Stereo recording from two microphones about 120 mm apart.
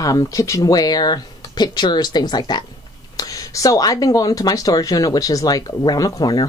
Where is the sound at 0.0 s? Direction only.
30° left (ahead or behind).